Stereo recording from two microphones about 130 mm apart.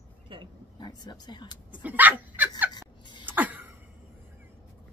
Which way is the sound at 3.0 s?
35° left (ahead or behind).